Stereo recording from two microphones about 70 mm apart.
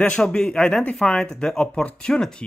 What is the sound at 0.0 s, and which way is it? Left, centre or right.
Speech, centre.